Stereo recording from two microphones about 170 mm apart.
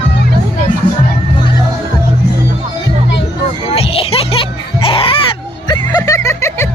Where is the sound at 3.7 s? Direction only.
35° left (ahead or behind).